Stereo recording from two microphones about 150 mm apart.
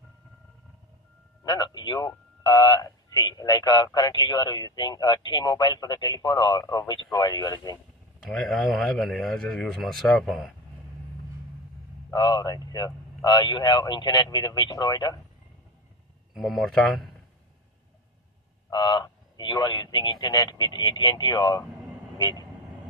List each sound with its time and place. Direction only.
1.5 s speech: 25° left (ahead or behind)
8.3 s speech: 5° left (ahead or behind)
12.1 s speech: 30° left (ahead or behind)
16.3 s speech: centre (ahead or behind)
18.7 s speech: 30° left (ahead or behind)
22.1 s vehicle: 25° left (ahead or behind)